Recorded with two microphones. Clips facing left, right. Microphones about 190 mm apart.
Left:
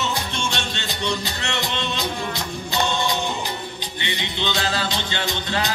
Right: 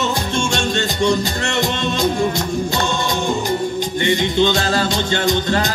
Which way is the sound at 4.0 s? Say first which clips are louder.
Right 12 dB; 45° right (ahead or behind).